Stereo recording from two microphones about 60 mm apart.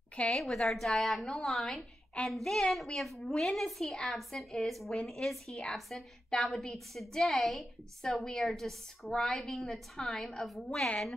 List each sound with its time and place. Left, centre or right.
0.1 s a woman's voice: centre
0.7 s a woman's voice: centre